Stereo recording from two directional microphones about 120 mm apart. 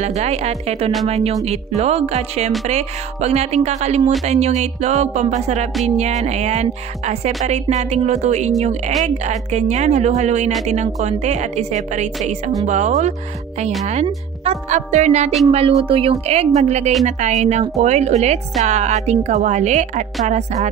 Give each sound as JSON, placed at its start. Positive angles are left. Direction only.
{"t": 0.0, "sound": "speech", "side_deg": -65}
{"t": 2.6, "sound": "music", "side_deg": -70}
{"t": 14.4, "sound": "music", "side_deg": -70}
{"t": 15.8, "sound": "speech", "side_deg": -50}
{"t": 17.0, "sound": "music", "side_deg": -80}